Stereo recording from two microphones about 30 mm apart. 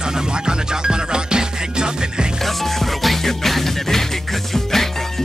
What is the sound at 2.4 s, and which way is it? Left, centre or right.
Music, centre.